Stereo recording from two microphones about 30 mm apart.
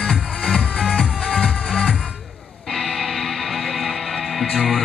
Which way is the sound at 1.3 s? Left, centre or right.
Left.